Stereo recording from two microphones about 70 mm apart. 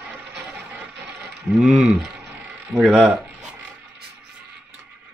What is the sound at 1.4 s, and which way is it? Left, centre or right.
Speech, centre.